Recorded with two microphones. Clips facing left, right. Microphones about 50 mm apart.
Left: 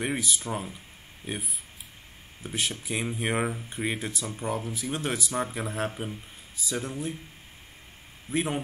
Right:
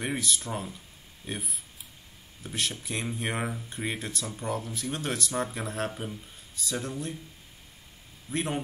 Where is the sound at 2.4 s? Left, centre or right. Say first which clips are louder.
Left 1 dB; centre.